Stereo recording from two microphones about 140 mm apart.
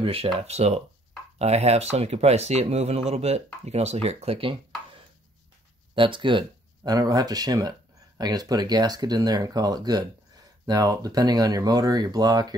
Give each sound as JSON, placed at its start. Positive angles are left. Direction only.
{"t": 0.0, "sound": "speech", "side_deg": -45}
{"t": 5.9, "sound": "speech", "side_deg": -35}